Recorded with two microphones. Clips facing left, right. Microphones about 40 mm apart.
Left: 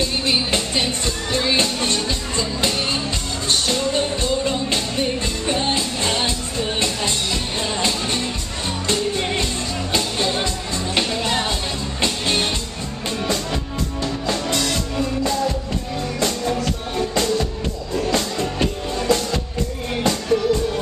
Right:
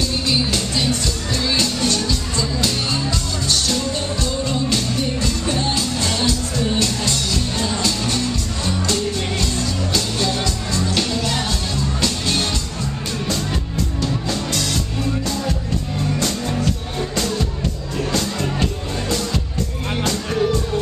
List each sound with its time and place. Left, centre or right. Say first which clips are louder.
0.0 s music: even; left
14.2 s music: left 1 dB; left
18.1 s music: even; left